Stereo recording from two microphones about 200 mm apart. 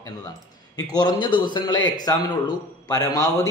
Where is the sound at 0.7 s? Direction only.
20° left (ahead or behind).